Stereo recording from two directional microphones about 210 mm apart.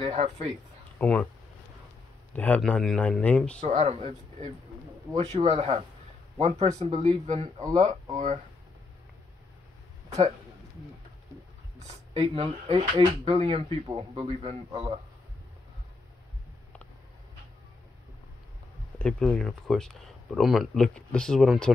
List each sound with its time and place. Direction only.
0.0 s speech: 25° right (ahead or behind)
0.9 s speech: 5° left (ahead or behind)
2.3 s speech: 5° left (ahead or behind)
3.6 s speech: 30° right (ahead or behind)
11.8 s speech: 30° right (ahead or behind)
18.9 s speech: 5° left (ahead or behind)